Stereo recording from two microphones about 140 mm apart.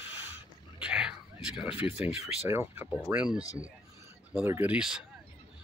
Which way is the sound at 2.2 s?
20° right (ahead or behind).